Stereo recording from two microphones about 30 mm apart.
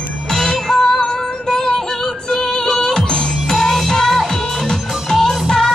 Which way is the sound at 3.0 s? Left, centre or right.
Centre.